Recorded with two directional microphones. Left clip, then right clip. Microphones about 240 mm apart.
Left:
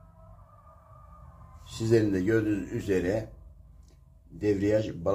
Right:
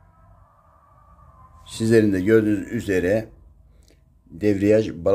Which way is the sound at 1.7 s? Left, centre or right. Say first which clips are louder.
Right 7 dB; right.